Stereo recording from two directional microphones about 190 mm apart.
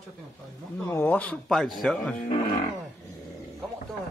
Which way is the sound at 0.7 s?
10° left (ahead or behind).